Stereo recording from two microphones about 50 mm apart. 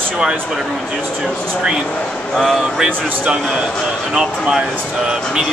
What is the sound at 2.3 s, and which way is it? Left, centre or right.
Speech, centre.